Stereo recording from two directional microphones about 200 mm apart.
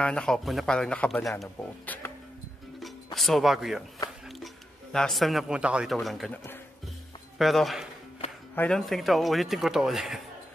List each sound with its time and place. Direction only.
0.0 s speech: 5° left (ahead or behind)
3.2 s speech: centre (ahead or behind)
4.9 s speech: centre (ahead or behind)